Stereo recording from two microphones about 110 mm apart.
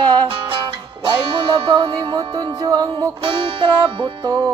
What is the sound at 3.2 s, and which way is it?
Music, 50° right (ahead or behind).